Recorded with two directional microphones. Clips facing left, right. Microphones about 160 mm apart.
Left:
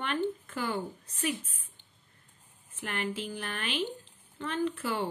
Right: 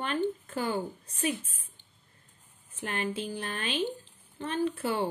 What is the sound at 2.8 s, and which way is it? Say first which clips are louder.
Speech: right 2 dB; 35° right (ahead or behind).